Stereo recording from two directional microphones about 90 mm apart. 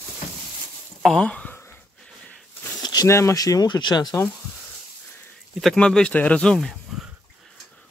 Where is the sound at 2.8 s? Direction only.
50° left (ahead or behind).